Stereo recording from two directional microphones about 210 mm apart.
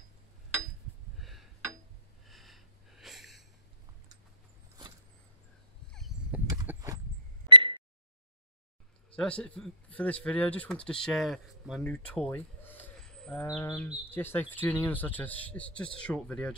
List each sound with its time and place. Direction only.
1.1 s a sound: centre (ahead or behind)
2.2 s sniff: centre (ahead or behind)
5.9 s a sound: centre (ahead or behind)
6.4 s clip-clop: 10° right (ahead or behind)
7.4 s beep: 25° right (ahead or behind)
9.1 s speech: 5° left (ahead or behind)
13.5 s speech: 15° left (ahead or behind)